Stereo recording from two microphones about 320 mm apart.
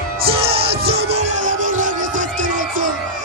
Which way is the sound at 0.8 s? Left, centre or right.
Centre.